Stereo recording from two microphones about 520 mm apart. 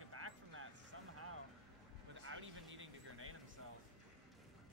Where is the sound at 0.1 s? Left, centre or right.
Right.